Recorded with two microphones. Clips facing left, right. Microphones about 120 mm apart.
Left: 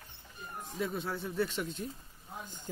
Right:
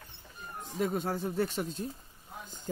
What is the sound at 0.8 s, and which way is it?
Speech, 45° right (ahead or behind).